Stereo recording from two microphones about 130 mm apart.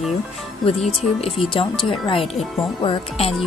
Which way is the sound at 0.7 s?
50° left (ahead or behind).